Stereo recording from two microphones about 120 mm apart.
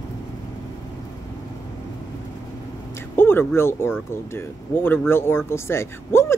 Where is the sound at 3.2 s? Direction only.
20° left (ahead or behind).